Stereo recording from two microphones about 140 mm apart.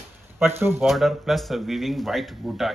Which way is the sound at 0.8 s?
Centre (ahead or behind).